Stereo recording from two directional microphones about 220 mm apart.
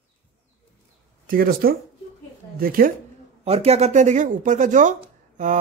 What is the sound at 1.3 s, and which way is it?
Speech, 40° right (ahead or behind).